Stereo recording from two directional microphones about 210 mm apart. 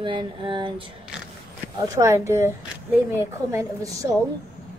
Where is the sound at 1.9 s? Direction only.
15° right (ahead or behind).